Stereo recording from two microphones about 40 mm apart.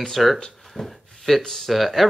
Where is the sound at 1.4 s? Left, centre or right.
Centre.